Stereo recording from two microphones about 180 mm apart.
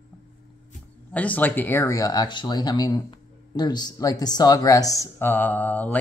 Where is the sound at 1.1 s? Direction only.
10° left (ahead or behind).